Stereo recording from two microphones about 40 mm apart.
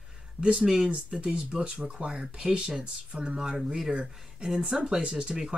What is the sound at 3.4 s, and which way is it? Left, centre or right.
Speech, centre.